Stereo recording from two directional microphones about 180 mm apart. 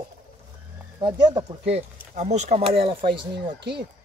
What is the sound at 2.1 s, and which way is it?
Speech, 40° right (ahead or behind).